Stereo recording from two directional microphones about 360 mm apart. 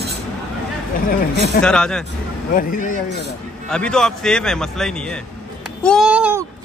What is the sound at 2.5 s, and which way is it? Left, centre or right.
Speech, left.